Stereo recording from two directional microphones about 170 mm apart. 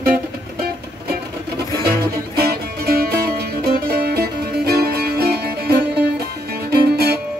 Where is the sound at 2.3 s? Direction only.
65° right (ahead or behind).